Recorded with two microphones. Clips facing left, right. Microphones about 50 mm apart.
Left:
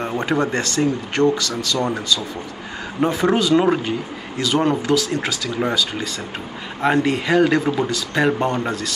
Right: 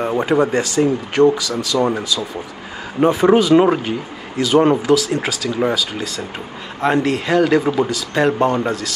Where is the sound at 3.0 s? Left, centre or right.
Right; by 8.3 s centre.